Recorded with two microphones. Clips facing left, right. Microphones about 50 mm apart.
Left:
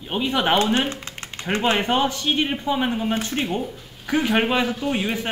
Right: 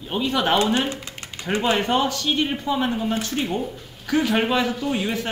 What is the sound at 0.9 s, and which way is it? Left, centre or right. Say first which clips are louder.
Typing: even; left.